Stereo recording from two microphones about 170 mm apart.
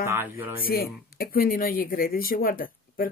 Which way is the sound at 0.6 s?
60° left (ahead or behind).